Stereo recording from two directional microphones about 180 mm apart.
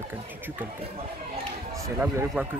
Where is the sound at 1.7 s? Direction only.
15° right (ahead or behind).